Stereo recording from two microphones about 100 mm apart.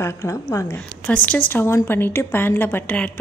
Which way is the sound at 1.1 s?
15° left (ahead or behind).